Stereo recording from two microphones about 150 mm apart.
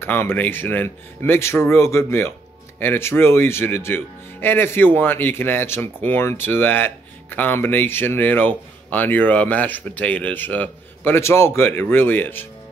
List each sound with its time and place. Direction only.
0.0 s speech: 15° left (ahead or behind)